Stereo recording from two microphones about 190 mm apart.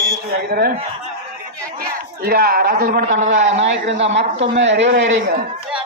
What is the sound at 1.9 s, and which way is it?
A woman's voice, 55° right (ahead or behind).